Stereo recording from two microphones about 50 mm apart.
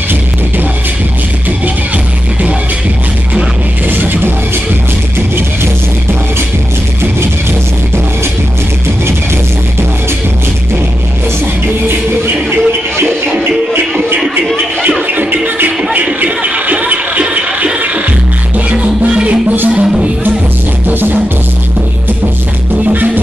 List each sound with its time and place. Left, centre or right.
3.9 s music: right
12.3 s music: right
15.0 s music: right
15.9 s a sound: right
18.7 s music: right
20.8 s music: right
22.8 s music: right